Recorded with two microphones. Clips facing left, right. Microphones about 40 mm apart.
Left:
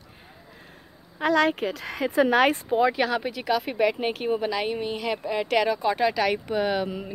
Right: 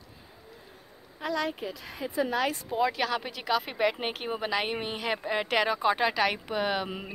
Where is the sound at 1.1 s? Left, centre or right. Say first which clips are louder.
Left 9 dB; left.